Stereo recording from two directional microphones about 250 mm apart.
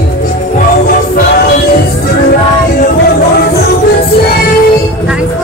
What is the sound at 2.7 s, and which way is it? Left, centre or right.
Music, left.